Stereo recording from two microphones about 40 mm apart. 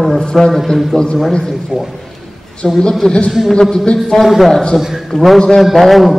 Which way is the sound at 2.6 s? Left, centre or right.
Centre.